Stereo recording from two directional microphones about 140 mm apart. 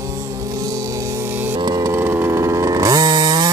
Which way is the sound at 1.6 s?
25° right (ahead or behind).